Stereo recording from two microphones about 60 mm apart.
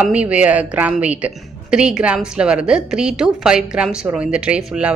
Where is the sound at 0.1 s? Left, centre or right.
Right.